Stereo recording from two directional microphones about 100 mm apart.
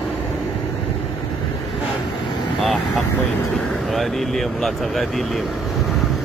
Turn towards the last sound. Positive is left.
turn(degrees=0)  # may be behind; listen again after turning